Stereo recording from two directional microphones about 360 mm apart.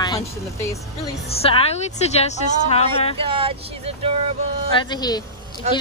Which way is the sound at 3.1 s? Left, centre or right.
Centre.